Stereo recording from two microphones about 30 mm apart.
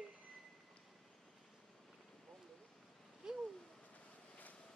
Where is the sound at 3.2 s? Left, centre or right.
Right.